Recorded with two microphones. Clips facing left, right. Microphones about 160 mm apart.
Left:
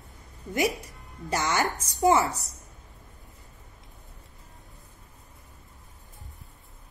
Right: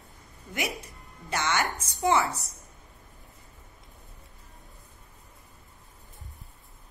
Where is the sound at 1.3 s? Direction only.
40° left (ahead or behind).